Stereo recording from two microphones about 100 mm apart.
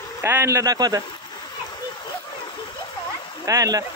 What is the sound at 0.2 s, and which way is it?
Speech, 25° right (ahead or behind).